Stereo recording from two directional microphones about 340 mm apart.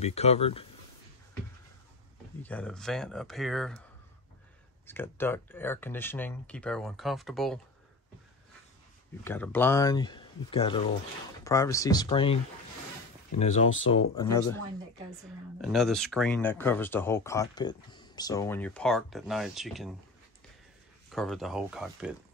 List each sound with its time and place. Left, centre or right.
0.0 s speech: centre
2.4 s speech: centre
4.8 s speech: centre
9.2 s speech: centre
13.4 s speech: centre
15.6 s speech: centre
21.1 s speech: centre